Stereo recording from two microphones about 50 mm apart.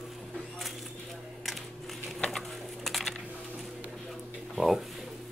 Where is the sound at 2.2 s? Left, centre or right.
Centre.